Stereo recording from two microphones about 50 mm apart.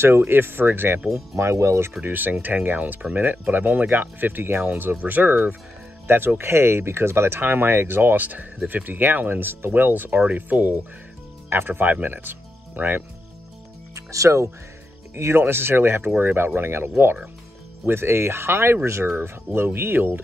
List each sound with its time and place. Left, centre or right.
0.3 s speech: right
1.1 s speech: right
2.0 s speech: right
6.0 s speech: right
10.2 s speech: right
11.5 s speech: right
11.8 s speech: right
13.9 s speech: right
15.1 s speech: right
15.4 s speech: right